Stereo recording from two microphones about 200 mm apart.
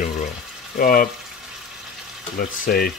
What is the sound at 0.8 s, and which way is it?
Speech, 45° left (ahead or behind).